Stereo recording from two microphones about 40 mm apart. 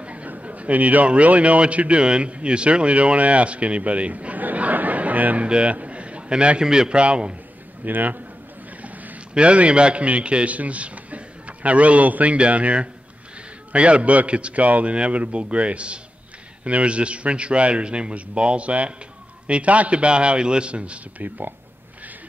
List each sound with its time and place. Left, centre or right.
0.0 s a sound: right
0.4 s a man's voice: right
7.8 s a man's voice: right
8.8 s boat: right
9.3 s a man's voice: right
21.2 s a man's voice: right